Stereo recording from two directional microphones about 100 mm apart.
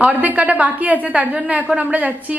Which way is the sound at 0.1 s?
15° right (ahead or behind).